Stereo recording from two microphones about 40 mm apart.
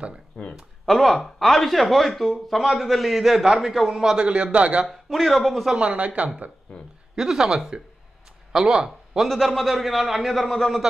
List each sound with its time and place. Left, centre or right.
0.3 s speech: left
0.8 s a man's voice: centre
4.2 s a man's voice: right
4.8 s a man's voice: centre
5.8 s a man's voice: right
7.2 s a man's voice: centre
9.3 s a man's voice: centre